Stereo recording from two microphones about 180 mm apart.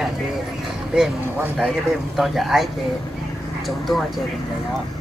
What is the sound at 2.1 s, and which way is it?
Speech, centre (ahead or behind).